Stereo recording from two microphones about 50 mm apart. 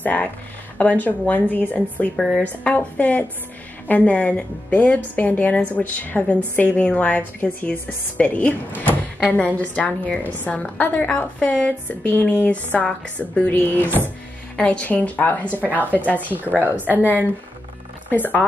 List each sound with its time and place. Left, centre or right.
0.0 s a woman's voice: left
2.4 s a woman's voice: left
13.5 s a woman's voice: left
15.4 s a woman's voice: right
18.1 s a woman's voice: left